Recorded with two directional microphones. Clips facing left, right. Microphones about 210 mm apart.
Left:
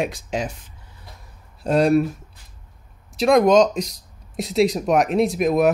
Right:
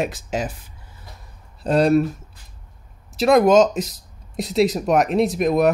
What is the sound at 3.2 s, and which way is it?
Speech, 5° right (ahead or behind).